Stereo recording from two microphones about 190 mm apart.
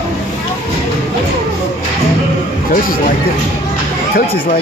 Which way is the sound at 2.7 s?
45° left (ahead or behind).